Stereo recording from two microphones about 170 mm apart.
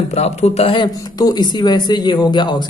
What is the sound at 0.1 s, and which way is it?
A man's voice, 40° left (ahead or behind).